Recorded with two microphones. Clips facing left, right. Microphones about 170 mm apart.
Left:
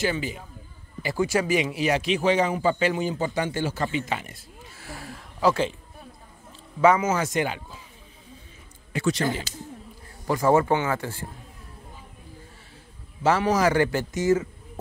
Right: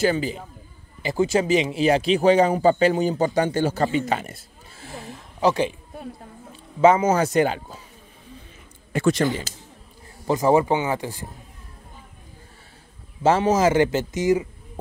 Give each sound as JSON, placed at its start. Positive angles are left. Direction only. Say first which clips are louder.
{"t": 0.0, "sound": "a man's voice", "louder": "right 5 dB", "side_deg": -35}
{"t": 1.0, "sound": "a man's voice", "louder": "right 3 dB", "side_deg": -25}
{"t": 4.7, "sound": "a sound", "louder": "right 3 dB", "side_deg": -20}
{"t": 6.8, "sound": "a man's voice", "louder": "right 4 dB", "side_deg": -30}
{"t": 8.9, "sound": "a man's voice", "louder": "right 5 dB", "side_deg": -50}
{"t": 10.2, "sound": "speech", "louder": "right 2 dB", "side_deg": -20}
{"t": 13.2, "sound": "a man's voice", "louder": "right 3 dB", "side_deg": -25}